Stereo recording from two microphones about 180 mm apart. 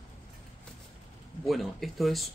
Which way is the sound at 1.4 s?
Centre (ahead or behind).